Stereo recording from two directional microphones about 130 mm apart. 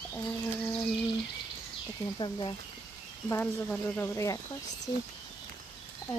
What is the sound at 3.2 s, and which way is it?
Speech, 15° left (ahead or behind).